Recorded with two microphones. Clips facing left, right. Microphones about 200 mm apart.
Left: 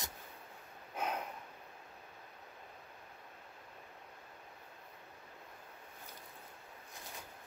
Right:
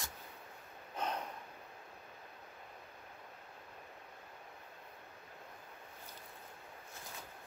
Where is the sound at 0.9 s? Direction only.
10° left (ahead or behind).